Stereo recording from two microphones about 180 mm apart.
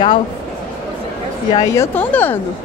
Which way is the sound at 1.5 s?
20° left (ahead or behind).